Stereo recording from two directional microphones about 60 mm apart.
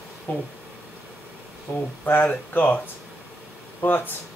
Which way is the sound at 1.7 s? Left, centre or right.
Left.